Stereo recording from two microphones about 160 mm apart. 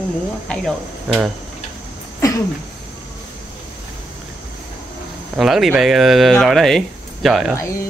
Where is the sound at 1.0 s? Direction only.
5° right (ahead or behind).